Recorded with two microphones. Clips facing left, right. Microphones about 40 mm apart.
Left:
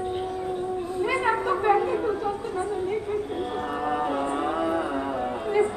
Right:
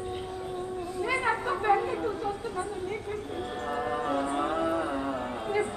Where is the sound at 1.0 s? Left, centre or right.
Centre.